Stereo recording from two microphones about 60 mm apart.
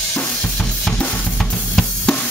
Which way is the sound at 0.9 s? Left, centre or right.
Centre.